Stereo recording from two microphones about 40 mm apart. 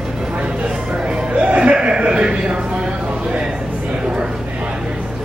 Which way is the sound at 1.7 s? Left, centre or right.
Right.